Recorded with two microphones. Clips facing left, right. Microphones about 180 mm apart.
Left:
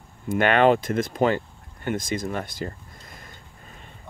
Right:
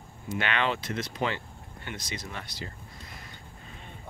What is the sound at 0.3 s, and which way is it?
Speech, 50° left (ahead or behind).